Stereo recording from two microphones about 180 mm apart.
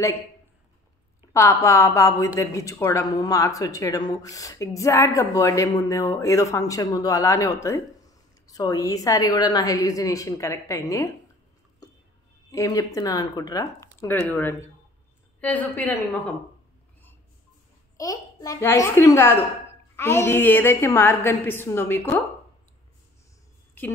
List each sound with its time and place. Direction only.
1.3 s a woman's voice: 15° left (ahead or behind)
12.4 s a woman's voice: 20° left (ahead or behind)
14.0 s a woman's voice: 10° left (ahead or behind)
17.9 s a woman's voice: 20° left (ahead or behind)
23.8 s a woman's voice: 10° left (ahead or behind)